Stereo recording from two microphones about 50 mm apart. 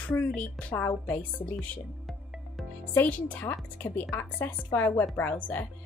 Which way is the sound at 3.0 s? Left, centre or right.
Left.